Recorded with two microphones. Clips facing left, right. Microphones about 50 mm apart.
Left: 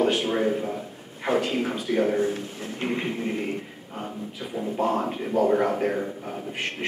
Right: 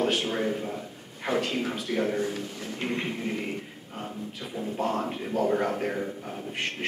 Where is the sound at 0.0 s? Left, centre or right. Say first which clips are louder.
Left 4 dB; centre.